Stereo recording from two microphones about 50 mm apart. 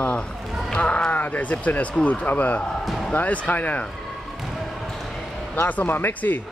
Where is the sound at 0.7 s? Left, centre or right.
Left.